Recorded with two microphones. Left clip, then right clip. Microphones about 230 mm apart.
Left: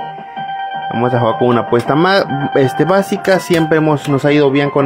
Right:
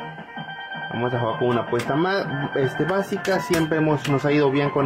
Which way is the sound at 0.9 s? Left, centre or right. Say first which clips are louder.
Left 10 dB; left.